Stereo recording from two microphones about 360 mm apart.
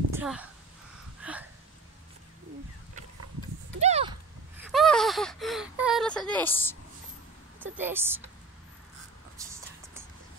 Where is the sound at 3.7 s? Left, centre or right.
Centre.